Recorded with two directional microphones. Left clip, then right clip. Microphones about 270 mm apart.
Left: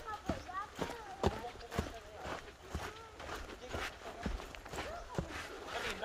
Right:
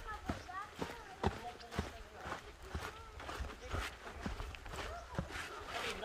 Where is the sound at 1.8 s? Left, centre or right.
Left.